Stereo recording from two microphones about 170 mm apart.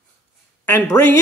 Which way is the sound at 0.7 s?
15° left (ahead or behind).